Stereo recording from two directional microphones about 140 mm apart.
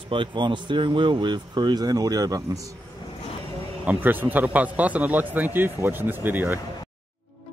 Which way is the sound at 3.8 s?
15° right (ahead or behind).